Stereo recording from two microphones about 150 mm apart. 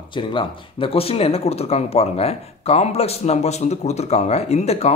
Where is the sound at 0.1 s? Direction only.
35° left (ahead or behind).